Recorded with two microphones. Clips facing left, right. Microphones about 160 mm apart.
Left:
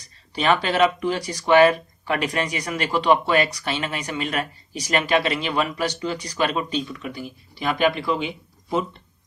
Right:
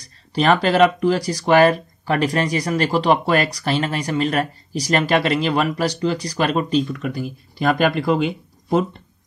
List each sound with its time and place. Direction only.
0.0 s speech: 35° right (ahead or behind)